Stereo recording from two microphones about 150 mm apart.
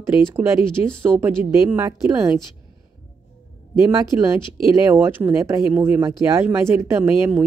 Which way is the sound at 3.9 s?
20° right (ahead or behind).